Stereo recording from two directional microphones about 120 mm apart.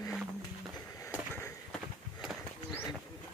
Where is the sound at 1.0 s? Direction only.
20° left (ahead or behind).